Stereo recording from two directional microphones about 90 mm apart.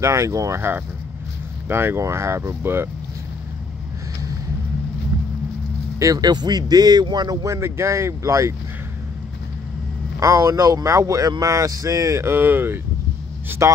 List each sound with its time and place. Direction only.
0.0 s speech: 35° right (ahead or behind)
5.9 s speech: 45° right (ahead or behind)
7.4 s speech: 35° right (ahead or behind)
10.2 s speech: 35° right (ahead or behind)